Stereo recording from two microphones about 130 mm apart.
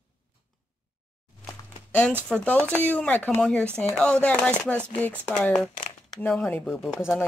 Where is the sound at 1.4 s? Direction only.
10° left (ahead or behind).